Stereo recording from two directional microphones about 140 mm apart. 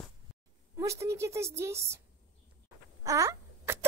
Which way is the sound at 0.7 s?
20° right (ahead or behind).